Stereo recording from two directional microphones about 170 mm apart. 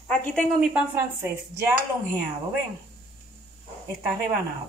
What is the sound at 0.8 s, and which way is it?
Speech, 15° right (ahead or behind).